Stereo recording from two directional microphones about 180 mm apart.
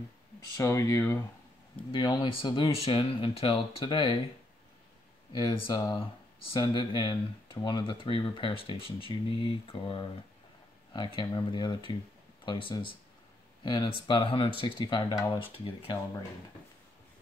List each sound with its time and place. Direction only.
0.6 s speech: 15° left (ahead or behind)
1.9 s speech: 25° left (ahead or behind)
5.3 s speech: 25° left (ahead or behind)
15.5 s speech: 30° left (ahead or behind)